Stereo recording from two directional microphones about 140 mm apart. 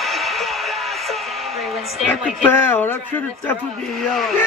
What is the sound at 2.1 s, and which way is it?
A man's voice, 15° left (ahead or behind).